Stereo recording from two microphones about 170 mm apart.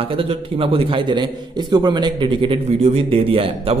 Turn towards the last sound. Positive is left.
turn(degrees=-35)  # may be behind; listen again after turning